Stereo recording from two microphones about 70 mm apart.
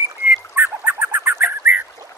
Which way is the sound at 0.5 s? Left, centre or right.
Right.